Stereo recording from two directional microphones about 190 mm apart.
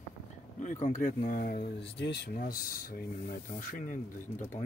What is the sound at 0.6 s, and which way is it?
Speech, 40° left (ahead or behind).